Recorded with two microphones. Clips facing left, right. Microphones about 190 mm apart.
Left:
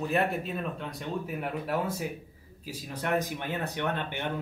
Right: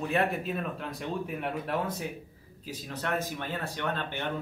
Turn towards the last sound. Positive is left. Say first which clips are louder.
# left 1 dB
turn(degrees=15)  # may be behind; listen again after turning